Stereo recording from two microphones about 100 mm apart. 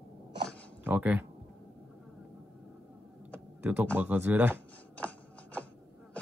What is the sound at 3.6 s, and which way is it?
Speech, 15° right (ahead or behind).